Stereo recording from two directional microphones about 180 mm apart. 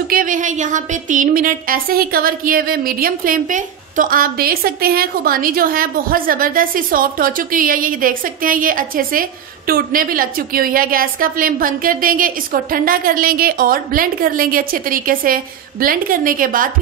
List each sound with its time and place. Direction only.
0.1 s speech: 45° right (ahead or behind)